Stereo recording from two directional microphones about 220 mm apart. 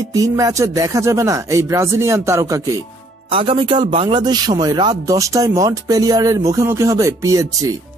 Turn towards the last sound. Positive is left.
turn(degrees=-15)  # may be behind; listen again after turning